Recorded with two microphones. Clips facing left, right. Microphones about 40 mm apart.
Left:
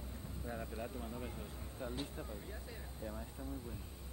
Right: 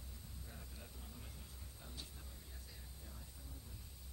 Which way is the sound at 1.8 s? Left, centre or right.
Left.